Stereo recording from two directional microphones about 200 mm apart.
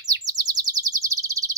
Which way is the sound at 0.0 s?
20° right (ahead or behind).